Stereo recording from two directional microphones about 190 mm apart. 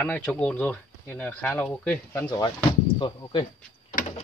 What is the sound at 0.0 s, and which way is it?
Speech, 10° left (ahead or behind).